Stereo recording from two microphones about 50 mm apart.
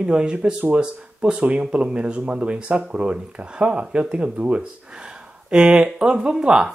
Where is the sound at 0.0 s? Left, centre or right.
Centre.